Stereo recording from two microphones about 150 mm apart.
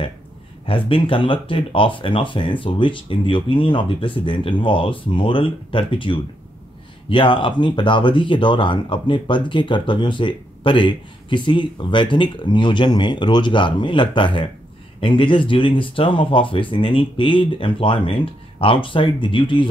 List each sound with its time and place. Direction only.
0.7 s speech: 35° left (ahead or behind)